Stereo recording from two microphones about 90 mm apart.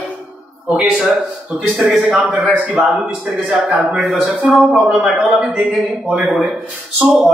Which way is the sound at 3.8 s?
5° right (ahead or behind).